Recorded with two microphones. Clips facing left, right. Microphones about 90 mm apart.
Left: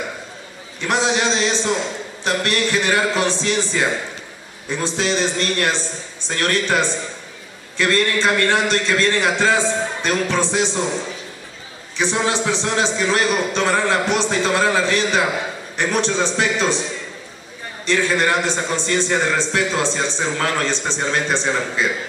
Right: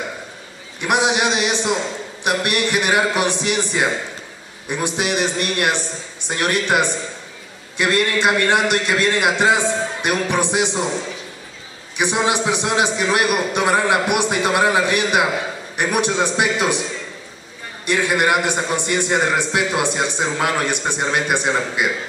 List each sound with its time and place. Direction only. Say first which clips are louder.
0.7 s a man's voice: right 1 dB; 15° right (ahead or behind)
12.0 s a man's voice: right 1 dB; 15° right (ahead or behind)
17.8 s a man's voice: even; 15° right (ahead or behind)